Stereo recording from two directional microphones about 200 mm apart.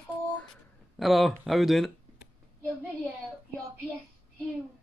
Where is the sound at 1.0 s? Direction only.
Centre (ahead or behind).